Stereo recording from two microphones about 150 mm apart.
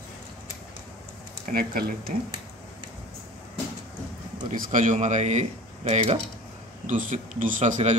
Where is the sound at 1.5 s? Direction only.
75° right (ahead or behind).